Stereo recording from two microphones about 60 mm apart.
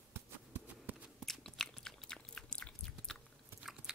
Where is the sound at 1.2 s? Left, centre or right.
Centre.